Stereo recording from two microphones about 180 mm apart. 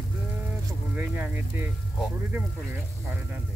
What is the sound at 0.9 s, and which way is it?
Speech, 10° right (ahead or behind).